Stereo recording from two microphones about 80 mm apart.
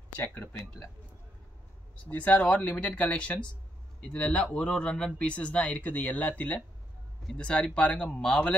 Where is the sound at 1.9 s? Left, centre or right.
Centre.